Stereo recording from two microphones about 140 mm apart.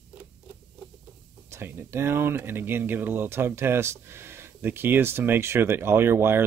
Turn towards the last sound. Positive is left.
turn(degrees=-15)  # may be behind; listen again after turning